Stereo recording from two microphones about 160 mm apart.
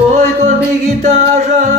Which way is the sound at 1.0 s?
45° right (ahead or behind).